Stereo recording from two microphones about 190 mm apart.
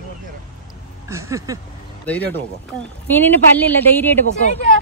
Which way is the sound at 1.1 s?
15° right (ahead or behind).